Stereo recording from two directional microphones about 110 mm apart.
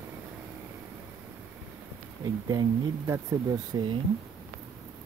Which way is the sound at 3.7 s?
35° right (ahead or behind).